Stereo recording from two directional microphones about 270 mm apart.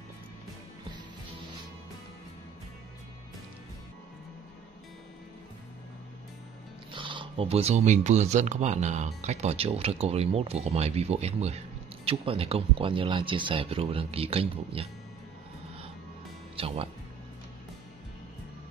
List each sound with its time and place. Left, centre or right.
6.9 s speech: centre
16.5 s speech: right